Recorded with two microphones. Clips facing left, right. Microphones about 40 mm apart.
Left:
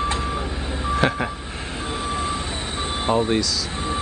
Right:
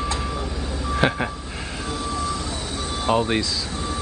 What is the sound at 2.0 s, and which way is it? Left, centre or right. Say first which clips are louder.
Vehicle: left 1 dB; left.